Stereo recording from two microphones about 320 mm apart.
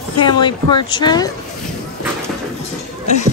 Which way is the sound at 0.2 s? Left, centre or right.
Centre.